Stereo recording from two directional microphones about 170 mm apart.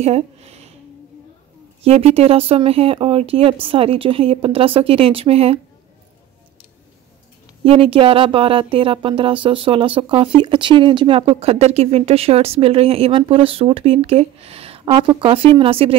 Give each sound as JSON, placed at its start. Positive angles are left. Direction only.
{"t": 0.0, "sound": "speech", "side_deg": -40}
{"t": 1.8, "sound": "speech", "side_deg": -35}
{"t": 7.6, "sound": "speech", "side_deg": -30}